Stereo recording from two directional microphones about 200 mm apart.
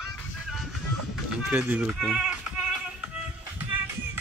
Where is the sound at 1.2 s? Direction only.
5° right (ahead or behind).